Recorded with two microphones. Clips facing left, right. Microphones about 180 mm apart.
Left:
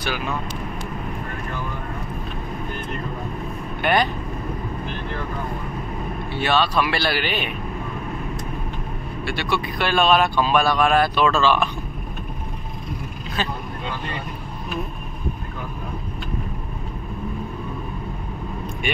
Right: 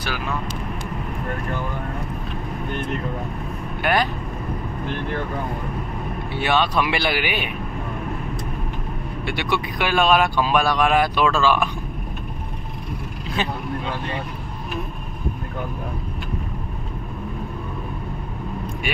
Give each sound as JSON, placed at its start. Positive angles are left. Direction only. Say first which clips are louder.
{"t": 3.8, "sound": "speech", "louder": "left 1 dB", "side_deg": -5}
{"t": 6.3, "sound": "speech", "louder": "even", "side_deg": -15}
{"t": 9.2, "sound": "speech", "louder": "even", "side_deg": -15}